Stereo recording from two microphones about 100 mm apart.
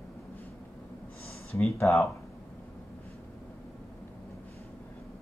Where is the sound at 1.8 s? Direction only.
20° left (ahead or behind).